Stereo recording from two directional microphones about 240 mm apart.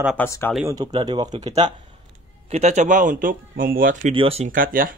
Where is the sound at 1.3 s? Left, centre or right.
Right.